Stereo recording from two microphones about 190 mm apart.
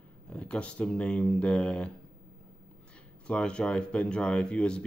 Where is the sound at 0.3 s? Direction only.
5° left (ahead or behind).